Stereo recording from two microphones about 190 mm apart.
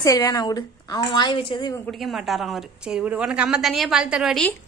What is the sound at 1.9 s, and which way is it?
A woman's voice, centre (ahead or behind).